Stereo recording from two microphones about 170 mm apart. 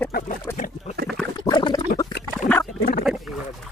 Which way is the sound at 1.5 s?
25° left (ahead or behind).